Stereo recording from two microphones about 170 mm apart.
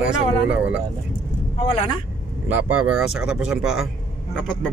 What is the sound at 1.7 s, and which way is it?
Speech, 30° left (ahead or behind).